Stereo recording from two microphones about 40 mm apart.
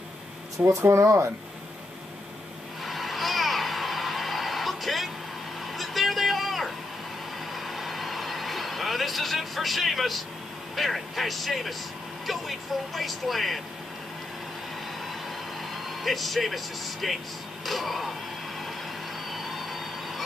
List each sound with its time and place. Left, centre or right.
0.6 s speech: right
2.8 s a sound: centre
5.8 s vehicle: centre
10.8 s speech: centre
15.7 s speech: centre
19.3 s vehicle: centre